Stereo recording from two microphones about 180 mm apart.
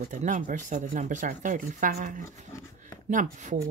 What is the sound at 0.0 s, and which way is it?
Speech, 45° right (ahead or behind).